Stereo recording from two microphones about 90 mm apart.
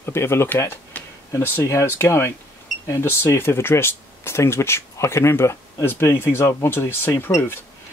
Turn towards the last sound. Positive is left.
turn(degrees=25)  # may be behind; listen again after turning